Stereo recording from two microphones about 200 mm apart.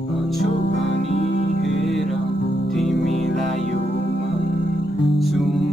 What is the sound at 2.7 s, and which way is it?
Music, centre (ahead or behind).